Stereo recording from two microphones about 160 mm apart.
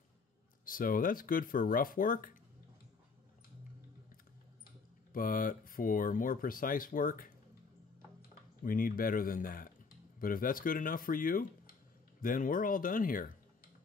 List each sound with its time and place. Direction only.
0.7 s speech: 60° left (ahead or behind)
4.6 s speech: 60° left (ahead or behind)
8.6 s speech: 60° left (ahead or behind)